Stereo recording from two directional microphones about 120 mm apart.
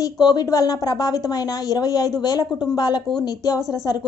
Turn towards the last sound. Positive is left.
turn(degrees=30)  # may be behind; listen again after turning